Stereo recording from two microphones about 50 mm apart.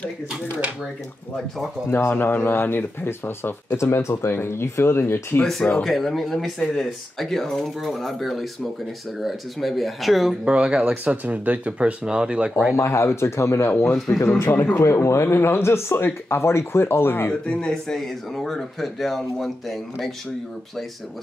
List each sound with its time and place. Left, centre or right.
1.9 s speech: left
5.4 s speech: centre
10.4 s speech: right
12.7 s speech: left
13.6 s speech: left
14.1 s speech: left
14.8 s speech: left
15.2 s speech: left
17.3 s speech: left
17.8 s speech: centre